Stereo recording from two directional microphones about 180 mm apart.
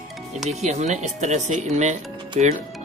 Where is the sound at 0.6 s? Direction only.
40° right (ahead or behind).